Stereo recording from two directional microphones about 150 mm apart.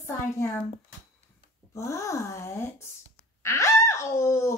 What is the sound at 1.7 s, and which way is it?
A woman's voice, 20° left (ahead or behind).